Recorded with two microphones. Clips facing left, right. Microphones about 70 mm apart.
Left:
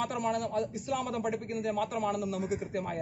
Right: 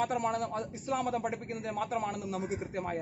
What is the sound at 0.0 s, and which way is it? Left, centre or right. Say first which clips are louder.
A man's voice: even; right.